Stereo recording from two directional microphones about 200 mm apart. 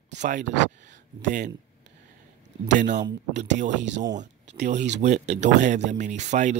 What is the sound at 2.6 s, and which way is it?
Speech, 40° right (ahead or behind).